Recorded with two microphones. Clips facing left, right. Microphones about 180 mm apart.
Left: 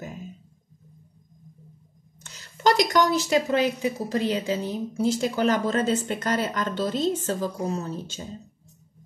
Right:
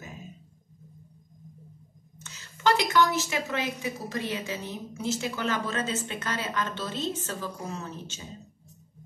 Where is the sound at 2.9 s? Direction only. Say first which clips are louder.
Left 4 dB; 35° left (ahead or behind).